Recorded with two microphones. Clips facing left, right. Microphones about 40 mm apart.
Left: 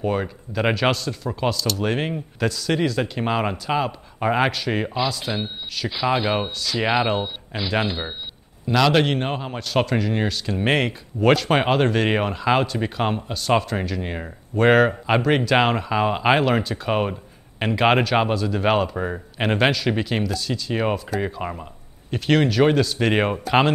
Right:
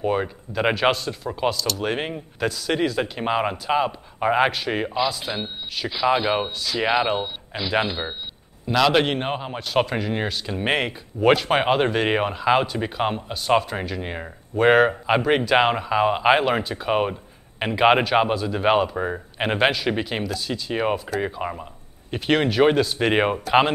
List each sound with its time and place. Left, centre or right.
0.0 s speech: centre